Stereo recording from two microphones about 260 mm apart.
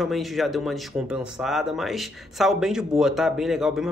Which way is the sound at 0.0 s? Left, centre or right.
Centre.